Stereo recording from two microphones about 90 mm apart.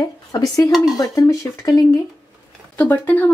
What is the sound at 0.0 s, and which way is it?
Speech, 40° left (ahead or behind).